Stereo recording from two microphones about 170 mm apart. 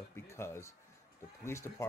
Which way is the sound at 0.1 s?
15° left (ahead or behind).